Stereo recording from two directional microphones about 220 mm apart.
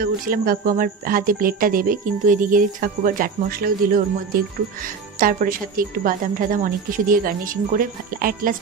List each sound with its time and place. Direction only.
0.0 s speech: 40° right (ahead or behind)